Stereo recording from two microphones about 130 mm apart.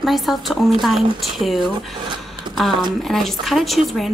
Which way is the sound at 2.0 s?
35° right (ahead or behind).